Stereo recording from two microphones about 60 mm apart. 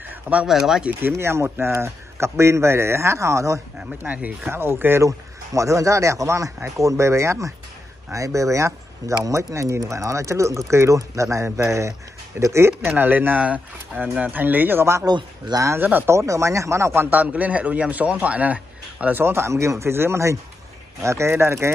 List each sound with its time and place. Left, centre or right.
0.0 s a sound: right
0.5 s speech: centre
1.1 s speech: right
4.0 s speech: right
4.5 s speech: right
5.0 s speech: right
12.8 s speech: right
16.1 s speech: right
16.9 s speech: right
17.2 s speech: right
19.2 s speech: right